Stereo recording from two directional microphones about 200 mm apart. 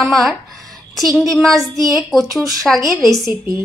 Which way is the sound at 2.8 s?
15° right (ahead or behind).